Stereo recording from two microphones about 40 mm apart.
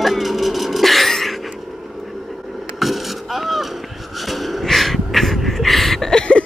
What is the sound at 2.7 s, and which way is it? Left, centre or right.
Chop, centre.